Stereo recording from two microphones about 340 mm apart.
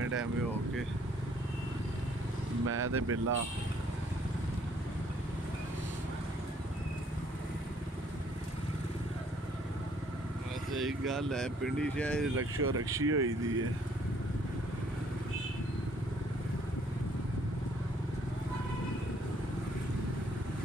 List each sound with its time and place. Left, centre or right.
0.0 s vehicle: right
2.6 s speech: right
10.7 s speech: centre
12.4 s speech: right